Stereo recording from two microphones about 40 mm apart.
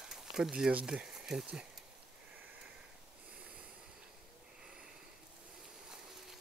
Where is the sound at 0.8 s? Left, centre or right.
Centre.